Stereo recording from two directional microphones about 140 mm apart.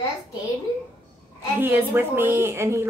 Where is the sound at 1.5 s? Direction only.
15° right (ahead or behind).